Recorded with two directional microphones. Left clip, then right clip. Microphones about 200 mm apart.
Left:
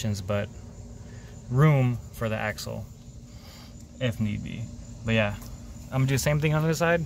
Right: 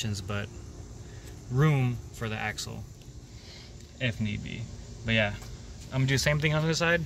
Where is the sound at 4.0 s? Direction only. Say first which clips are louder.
Left 2 dB; 10° left (ahead or behind).